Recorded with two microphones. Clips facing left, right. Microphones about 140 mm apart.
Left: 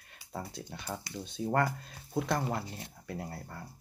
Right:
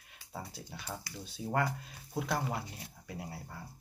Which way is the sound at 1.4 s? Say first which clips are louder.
Left 6 dB; 65° left (ahead or behind).